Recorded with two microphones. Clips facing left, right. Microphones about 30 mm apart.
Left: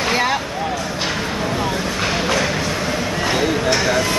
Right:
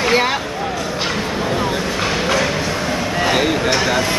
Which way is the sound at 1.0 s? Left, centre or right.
Centre.